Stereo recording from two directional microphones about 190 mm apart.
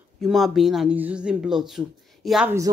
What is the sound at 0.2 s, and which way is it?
Speech, centre (ahead or behind).